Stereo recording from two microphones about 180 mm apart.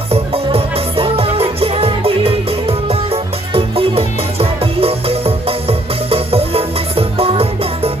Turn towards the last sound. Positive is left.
turn(degrees=-30)  # may be behind; listen again after turning